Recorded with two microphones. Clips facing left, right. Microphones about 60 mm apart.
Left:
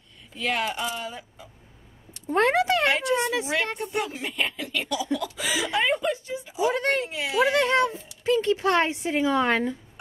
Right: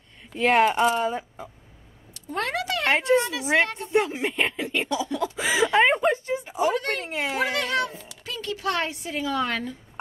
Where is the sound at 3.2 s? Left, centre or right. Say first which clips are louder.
Even; left.